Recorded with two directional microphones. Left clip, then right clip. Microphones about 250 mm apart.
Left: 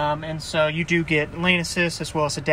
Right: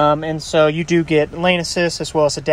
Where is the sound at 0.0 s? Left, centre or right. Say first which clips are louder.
Right 9 dB; right.